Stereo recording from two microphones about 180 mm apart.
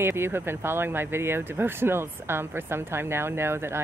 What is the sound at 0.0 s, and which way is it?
Speech, 15° right (ahead or behind).